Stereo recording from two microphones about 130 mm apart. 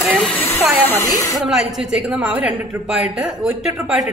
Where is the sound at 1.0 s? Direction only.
25° left (ahead or behind).